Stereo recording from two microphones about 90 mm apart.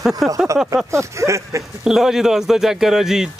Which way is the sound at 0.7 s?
35° right (ahead or behind).